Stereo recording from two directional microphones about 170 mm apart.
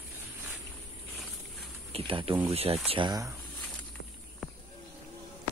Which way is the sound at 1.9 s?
30° right (ahead or behind).